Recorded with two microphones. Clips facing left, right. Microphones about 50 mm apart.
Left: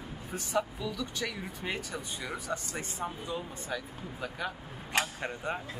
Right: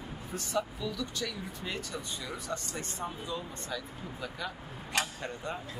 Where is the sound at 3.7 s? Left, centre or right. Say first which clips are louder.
Left 2 dB; left.